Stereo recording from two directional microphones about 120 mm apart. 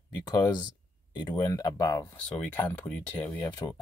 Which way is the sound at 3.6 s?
30° left (ahead or behind).